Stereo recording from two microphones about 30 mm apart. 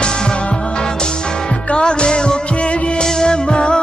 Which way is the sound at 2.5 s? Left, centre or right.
Left.